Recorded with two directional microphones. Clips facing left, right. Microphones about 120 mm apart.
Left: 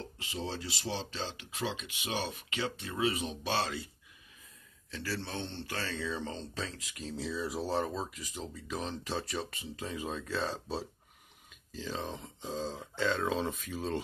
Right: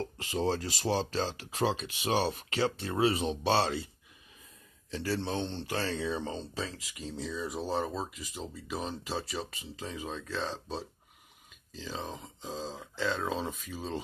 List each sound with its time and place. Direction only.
0.2 s speech: 40° right (ahead or behind)
4.9 s speech: 25° right (ahead or behind); by 14.0 s centre (ahead or behind)